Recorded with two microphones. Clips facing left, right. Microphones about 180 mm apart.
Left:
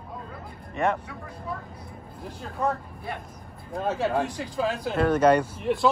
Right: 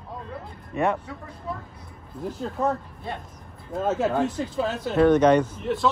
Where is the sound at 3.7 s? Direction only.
Centre (ahead or behind).